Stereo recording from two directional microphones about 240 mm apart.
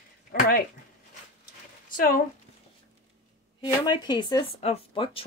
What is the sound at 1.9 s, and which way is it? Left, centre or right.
Speech, left.